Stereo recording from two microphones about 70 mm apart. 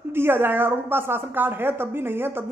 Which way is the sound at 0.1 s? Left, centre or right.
Right.